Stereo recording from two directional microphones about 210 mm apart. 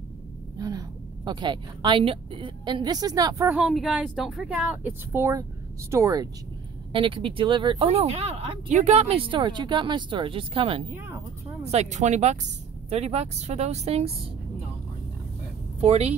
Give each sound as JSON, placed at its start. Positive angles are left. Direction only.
{"t": 0.6, "sound": "a woman's voice", "side_deg": -20}
{"t": 3.4, "sound": "a woman's voice", "side_deg": -5}
{"t": 6.9, "sound": "speech", "side_deg": -25}
{"t": 15.8, "sound": "speech", "side_deg": -30}